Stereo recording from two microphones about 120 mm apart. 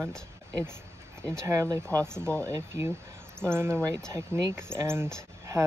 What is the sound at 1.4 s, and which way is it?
Speech, 25° right (ahead or behind).